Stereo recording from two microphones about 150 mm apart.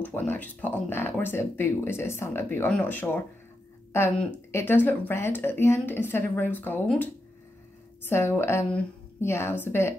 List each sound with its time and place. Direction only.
0.0 s speech: 10° left (ahead or behind)
4.5 s speech: 15° left (ahead or behind)
8.1 s speech: 15° left (ahead or behind)